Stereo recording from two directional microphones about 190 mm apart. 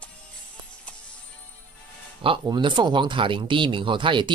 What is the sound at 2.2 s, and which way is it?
Speech, 25° right (ahead or behind).